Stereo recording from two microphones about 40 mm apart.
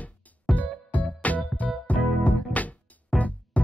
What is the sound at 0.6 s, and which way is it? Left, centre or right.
Music, left.